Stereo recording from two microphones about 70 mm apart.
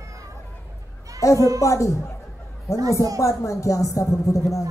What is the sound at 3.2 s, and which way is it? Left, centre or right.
A man's voice, left.